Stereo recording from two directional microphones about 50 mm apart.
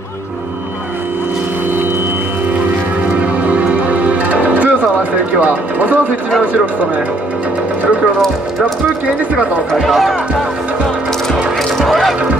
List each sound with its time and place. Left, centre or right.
3.4 s music: right
5.4 s speech: right
8.2 s speech: centre
9.8 s speech: centre
11.8 s speech: centre